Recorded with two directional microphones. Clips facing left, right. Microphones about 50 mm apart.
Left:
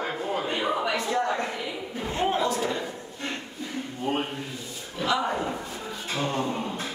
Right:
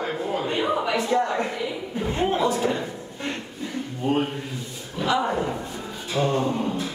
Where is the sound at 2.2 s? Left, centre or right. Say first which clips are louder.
Right 2 dB; centre.